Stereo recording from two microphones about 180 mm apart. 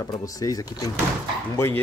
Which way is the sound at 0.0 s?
20° left (ahead or behind).